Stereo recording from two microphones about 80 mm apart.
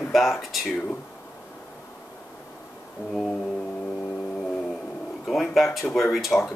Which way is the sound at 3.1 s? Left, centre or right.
Centre.